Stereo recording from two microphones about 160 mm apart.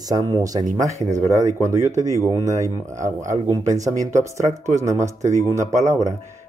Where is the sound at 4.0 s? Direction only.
50° right (ahead or behind).